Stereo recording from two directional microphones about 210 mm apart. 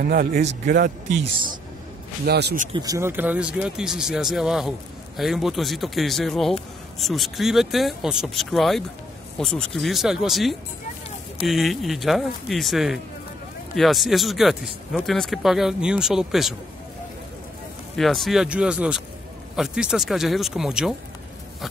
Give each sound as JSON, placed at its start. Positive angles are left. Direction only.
{"t": 0.0, "sound": "speech", "side_deg": -45}
{"t": 2.2, "sound": "speech", "side_deg": -50}
{"t": 2.7, "sound": "speech", "side_deg": -15}
{"t": 17.9, "sound": "speech", "side_deg": 0}